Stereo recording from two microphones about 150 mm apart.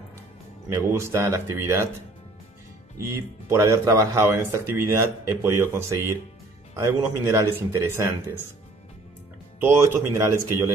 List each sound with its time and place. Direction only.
0.7 s speech: 20° right (ahead or behind)
3.1 s speech: 20° right (ahead or behind)
9.6 s speech: 15° right (ahead or behind)